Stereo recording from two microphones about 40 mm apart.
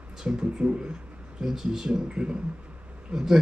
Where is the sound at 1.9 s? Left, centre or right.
Right.